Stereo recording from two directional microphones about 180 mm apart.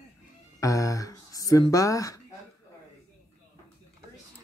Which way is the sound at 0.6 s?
15° left (ahead or behind).